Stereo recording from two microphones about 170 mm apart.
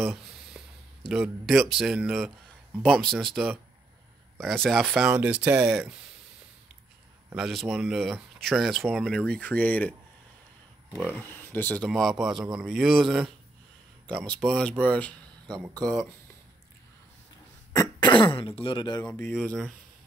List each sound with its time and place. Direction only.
0.0 s a sound: 5° right (ahead or behind)
1.0 s speech: centre (ahead or behind)
7.3 s speech: 5° right (ahead or behind)
9.3 s speech: 10° left (ahead or behind)
11.0 s speech: 5° right (ahead or behind)
11.2 s speech: 10° left (ahead or behind)
14.3 s speech: 5° left (ahead or behind)
17.7 s speech: 30° left (ahead or behind)
19.0 s speech: 5° left (ahead or behind)